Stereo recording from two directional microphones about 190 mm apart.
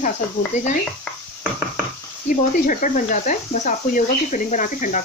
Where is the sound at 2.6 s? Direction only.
45° left (ahead or behind).